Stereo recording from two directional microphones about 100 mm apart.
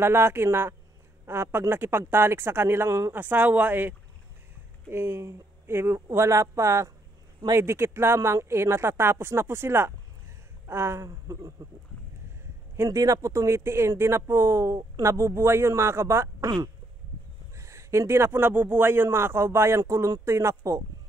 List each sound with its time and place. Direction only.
0.0 s speech: 25° right (ahead or behind)
4.9 s speech: 25° right (ahead or behind)
12.7 s speech: 30° right (ahead or behind)
16.4 s quack: 40° right (ahead or behind)
17.6 s speech: 30° right (ahead or behind)